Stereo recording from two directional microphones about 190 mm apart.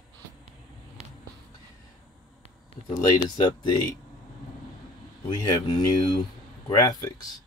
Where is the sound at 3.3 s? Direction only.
20° left (ahead or behind).